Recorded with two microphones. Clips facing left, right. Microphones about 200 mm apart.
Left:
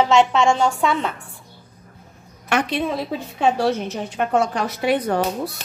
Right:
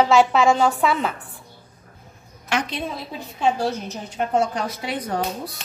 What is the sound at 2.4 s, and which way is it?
A woman's voice, 60° left (ahead or behind).